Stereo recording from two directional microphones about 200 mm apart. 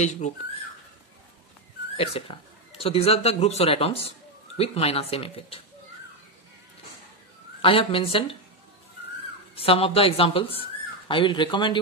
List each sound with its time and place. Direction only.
0.0 s speech: 35° left (ahead or behind)
2.0 s speech: 30° left (ahead or behind)
7.6 s speech: 30° left (ahead or behind)
9.6 s speech: 30° left (ahead or behind)